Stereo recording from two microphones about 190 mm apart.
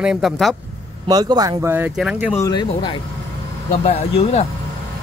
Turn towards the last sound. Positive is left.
turn(degrees=35)  # may be behind; listen again after turning